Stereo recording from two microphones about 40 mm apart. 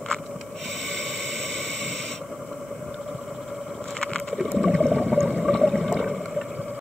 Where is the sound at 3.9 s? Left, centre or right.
Centre.